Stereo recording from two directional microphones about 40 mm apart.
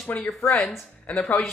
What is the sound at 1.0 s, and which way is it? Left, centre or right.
Speech, left.